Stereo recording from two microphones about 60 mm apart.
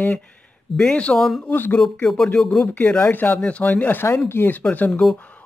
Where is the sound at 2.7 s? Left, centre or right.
Left.